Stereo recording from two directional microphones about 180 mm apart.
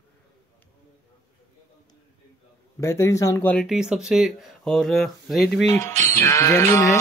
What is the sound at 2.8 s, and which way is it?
Speech, 15° left (ahead or behind).